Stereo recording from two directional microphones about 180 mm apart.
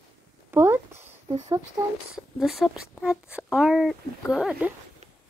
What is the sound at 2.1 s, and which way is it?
Speech, centre (ahead or behind).